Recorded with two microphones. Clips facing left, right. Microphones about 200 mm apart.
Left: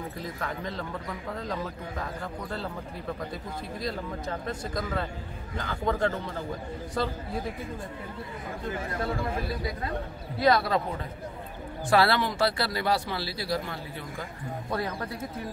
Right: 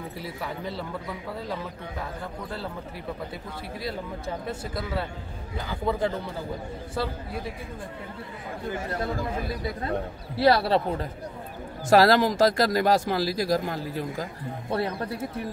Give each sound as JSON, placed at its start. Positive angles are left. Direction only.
{"t": 0.2, "sound": "speech", "side_deg": -10}
{"t": 3.8, "sound": "speech", "side_deg": -5}
{"t": 10.4, "sound": "a man's voice", "side_deg": -30}
{"t": 14.7, "sound": "speech", "side_deg": -25}